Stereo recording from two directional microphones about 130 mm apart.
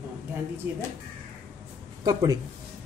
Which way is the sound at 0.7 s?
15° right (ahead or behind).